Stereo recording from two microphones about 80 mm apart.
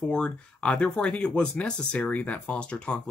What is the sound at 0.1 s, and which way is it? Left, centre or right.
Speech, centre.